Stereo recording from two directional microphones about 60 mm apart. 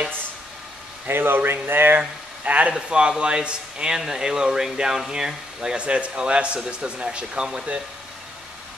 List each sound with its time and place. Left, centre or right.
1.0 s speech: right
2.0 s speech: right